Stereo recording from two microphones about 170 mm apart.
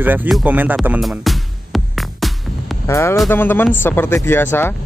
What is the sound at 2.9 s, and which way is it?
Speech, 15° left (ahead or behind).